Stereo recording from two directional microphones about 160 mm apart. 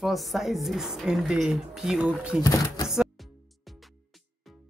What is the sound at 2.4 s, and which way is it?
Speech, 20° left (ahead or behind).